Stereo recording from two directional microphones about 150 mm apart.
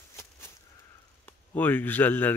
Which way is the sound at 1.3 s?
10° left (ahead or behind).